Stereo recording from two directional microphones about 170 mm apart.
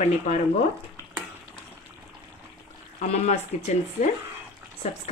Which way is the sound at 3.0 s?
40° left (ahead or behind).